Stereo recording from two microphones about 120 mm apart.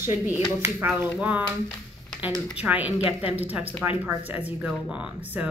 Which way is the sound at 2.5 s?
15° right (ahead or behind).